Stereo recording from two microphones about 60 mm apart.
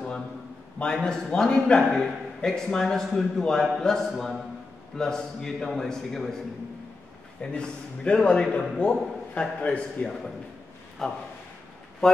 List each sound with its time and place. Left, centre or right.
1.0 s a man's voice: centre
7.5 s a man's voice: centre